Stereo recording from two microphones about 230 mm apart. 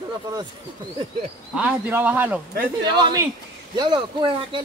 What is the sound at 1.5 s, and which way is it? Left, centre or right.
Speech, centre.